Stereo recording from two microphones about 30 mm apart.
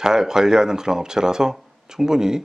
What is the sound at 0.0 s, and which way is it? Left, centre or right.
Speech, centre.